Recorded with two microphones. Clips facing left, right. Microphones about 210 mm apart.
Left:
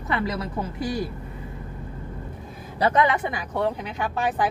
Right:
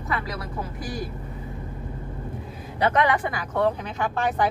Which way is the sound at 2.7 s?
30° left (ahead or behind).